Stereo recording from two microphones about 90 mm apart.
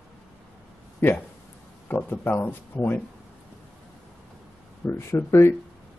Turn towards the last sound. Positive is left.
turn(degrees=25)  # may be behind; listen again after turning